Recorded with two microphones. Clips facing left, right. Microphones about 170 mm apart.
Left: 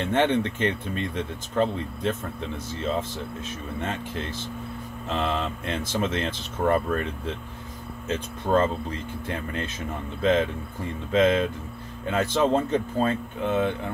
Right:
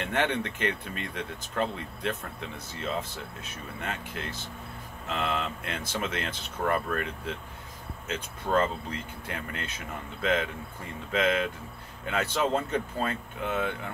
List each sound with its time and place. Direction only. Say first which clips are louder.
0.0 s speech: left 6 dB; 25° left (ahead or behind)
3.8 s speech: left 4 dB; 25° left (ahead or behind)